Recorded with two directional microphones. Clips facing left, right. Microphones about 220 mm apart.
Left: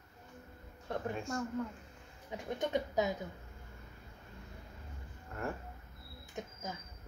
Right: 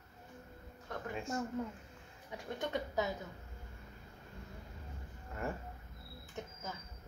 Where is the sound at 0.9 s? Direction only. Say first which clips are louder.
Left 5 dB; 30° left (ahead or behind).